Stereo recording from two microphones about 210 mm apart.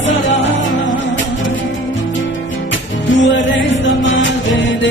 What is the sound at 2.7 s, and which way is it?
Music, 60° left (ahead or behind).